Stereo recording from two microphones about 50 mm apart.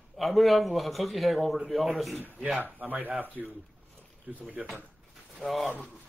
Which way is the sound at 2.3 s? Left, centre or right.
Right.